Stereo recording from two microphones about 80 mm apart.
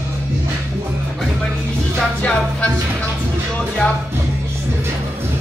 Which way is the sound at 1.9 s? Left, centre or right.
Centre.